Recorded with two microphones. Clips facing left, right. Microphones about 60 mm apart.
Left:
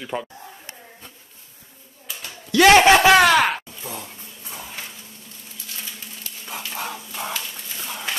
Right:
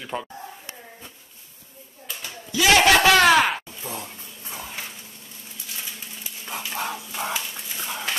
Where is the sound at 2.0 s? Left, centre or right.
Centre.